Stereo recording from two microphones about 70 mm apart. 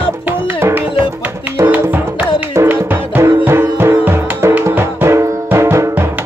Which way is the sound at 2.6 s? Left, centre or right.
Right.